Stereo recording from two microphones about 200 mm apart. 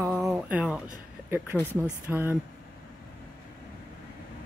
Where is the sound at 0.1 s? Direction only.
Centre (ahead or behind).